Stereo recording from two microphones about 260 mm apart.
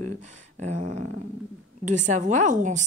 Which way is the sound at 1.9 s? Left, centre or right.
Right.